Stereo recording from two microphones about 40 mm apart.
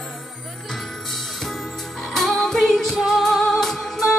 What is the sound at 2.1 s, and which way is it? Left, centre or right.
Music, centre.